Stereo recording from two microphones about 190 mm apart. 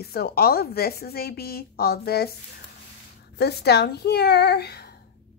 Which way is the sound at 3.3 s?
60° left (ahead or behind).